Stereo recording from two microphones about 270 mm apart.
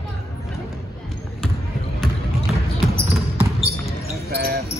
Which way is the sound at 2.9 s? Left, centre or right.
Centre.